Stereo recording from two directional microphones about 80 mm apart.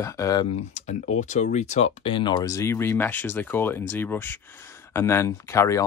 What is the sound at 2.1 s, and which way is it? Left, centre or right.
Speech, left.